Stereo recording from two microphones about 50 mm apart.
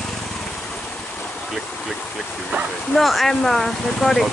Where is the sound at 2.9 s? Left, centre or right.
Centre.